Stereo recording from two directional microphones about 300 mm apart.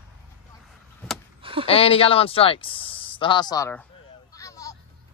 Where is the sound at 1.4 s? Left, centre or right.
Centre.